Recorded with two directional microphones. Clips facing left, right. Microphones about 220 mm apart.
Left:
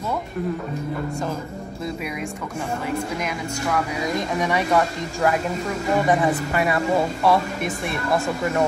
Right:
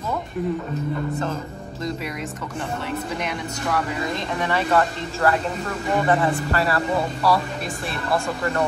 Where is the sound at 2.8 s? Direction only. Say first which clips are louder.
Left 2 dB; 5° left (ahead or behind); by 7.4 s 20° left (ahead or behind).